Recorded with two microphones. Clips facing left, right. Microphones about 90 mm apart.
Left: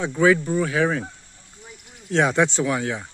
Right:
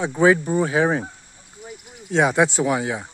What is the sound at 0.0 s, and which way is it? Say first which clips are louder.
Speech: right 1 dB; 25° right (ahead or behind).